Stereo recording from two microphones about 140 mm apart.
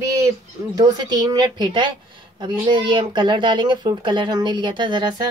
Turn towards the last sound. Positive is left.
turn(degrees=-35)  # may be behind; listen again after turning